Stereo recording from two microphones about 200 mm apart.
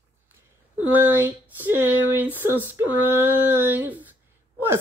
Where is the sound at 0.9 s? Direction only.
10° right (ahead or behind).